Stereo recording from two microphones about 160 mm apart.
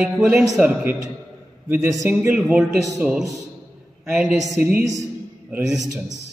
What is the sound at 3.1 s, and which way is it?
Speech, centre (ahead or behind).